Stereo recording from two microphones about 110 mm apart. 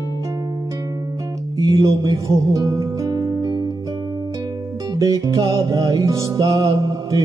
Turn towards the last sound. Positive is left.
turn(degrees=-35)  # may be behind; listen again after turning